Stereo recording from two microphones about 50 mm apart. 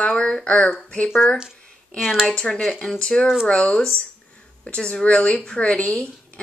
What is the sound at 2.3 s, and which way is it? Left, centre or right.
Speech, centre.